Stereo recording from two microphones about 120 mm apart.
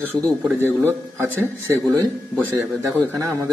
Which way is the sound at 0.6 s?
20° right (ahead or behind).